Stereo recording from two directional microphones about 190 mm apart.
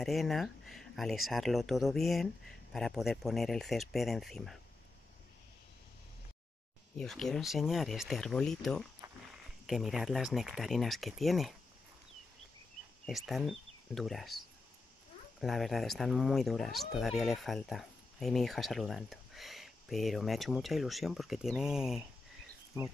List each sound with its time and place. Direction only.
0.0 s speech: centre (ahead or behind)
7.0 s speech: centre (ahead or behind)
13.0 s speech: centre (ahead or behind)
15.4 s speech: centre (ahead or behind)
22.7 s speech: 15° right (ahead or behind)